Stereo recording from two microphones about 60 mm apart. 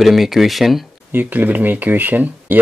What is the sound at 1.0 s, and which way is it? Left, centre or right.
Speech, right.